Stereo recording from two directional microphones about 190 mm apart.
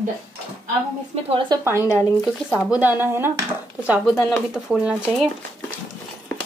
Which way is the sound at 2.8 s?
10° right (ahead or behind).